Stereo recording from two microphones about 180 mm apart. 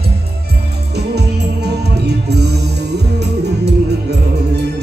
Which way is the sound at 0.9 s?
65° right (ahead or behind).